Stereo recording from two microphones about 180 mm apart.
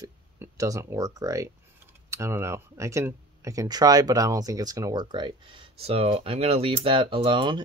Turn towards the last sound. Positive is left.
turn(degrees=-25)  # may be behind; listen again after turning